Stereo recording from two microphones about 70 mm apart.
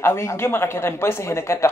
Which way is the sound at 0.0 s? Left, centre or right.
Left.